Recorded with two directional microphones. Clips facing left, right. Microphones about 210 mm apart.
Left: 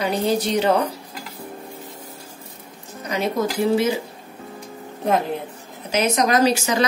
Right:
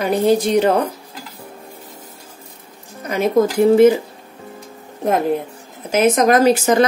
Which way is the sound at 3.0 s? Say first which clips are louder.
Right 7 dB; 50° right (ahead or behind).